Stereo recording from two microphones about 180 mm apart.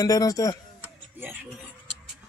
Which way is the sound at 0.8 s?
10° right (ahead or behind).